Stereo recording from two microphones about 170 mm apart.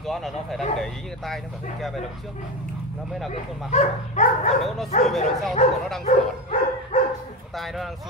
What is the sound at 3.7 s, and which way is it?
Dog, 40° left (ahead or behind).